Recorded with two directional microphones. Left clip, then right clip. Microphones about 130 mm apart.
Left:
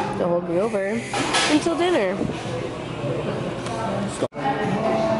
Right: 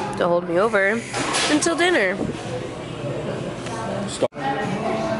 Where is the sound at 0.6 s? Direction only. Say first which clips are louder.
Right 5 dB; 20° left (ahead or behind).